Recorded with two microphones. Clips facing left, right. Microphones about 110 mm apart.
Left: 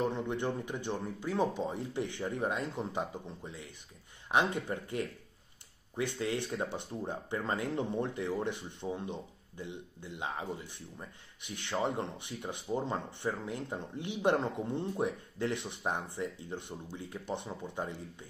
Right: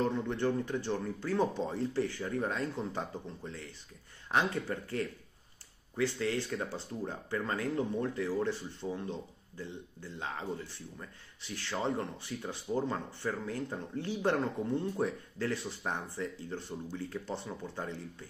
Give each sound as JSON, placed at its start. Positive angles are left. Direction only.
{"t": 0.0, "sound": "speech", "side_deg": 15}